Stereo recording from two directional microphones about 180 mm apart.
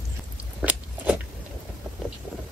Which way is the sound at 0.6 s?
5° right (ahead or behind).